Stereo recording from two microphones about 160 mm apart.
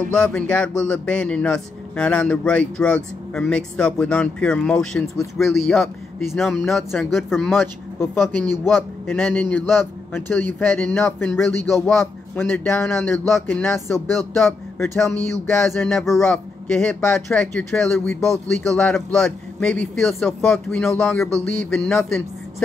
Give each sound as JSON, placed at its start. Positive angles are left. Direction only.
{"t": 0.1, "sound": "speech", "side_deg": 5}
{"t": 7.6, "sound": "speech", "side_deg": 15}
{"t": 8.6, "sound": "speech", "side_deg": 0}
{"t": 9.3, "sound": "speech", "side_deg": 10}
{"t": 14.4, "sound": "speech", "side_deg": 5}